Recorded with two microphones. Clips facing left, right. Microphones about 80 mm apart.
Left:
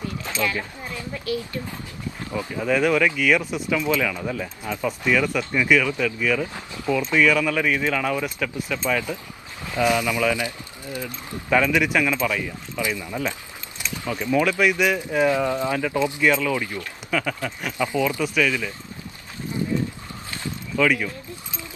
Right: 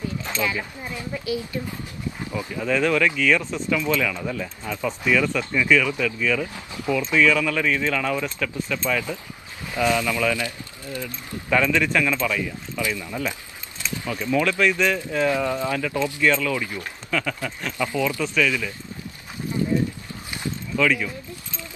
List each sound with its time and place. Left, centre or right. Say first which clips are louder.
0.4 s speech: left 1 dB; centre
2.5 s speech: left 1 dB; centre
11.5 s speech: left 1 dB; centre
20.7 s speech: left 1 dB; centre